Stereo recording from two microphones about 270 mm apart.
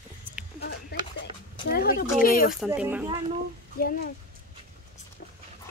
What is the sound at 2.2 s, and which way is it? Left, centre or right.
Speech, left.